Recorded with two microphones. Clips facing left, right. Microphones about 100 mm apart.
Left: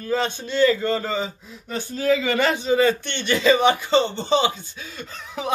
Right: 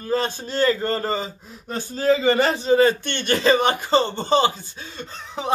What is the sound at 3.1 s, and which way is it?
Speech, 50° right (ahead or behind).